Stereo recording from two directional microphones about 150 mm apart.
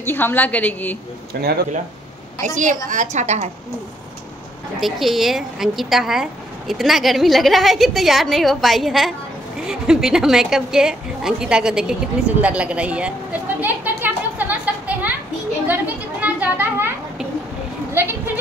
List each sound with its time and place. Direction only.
0.0 s a woman's voice: 15° left (ahead or behind)
1.3 s speech: 90° right
2.4 s a woman's voice: 55° right (ahead or behind)
4.7 s a woman's voice: centre (ahead or behind)
15.6 s a sound: 10° right (ahead or behind)
17.9 s speech: 15° right (ahead or behind)